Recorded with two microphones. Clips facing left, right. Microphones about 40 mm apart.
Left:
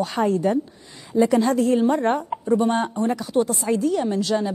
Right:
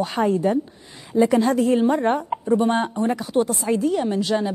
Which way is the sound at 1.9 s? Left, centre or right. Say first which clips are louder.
Right 1 dB; centre.